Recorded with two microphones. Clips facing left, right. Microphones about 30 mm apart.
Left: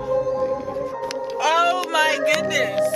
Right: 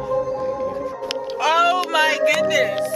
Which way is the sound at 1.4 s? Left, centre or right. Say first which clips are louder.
Right 2 dB; centre.